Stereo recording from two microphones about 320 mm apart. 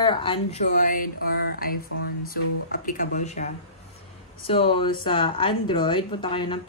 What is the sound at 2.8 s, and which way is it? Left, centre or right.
Speech, left.